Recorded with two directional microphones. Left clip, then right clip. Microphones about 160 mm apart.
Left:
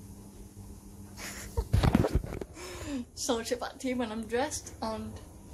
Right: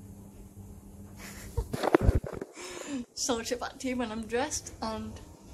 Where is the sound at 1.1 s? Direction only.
45° left (ahead or behind).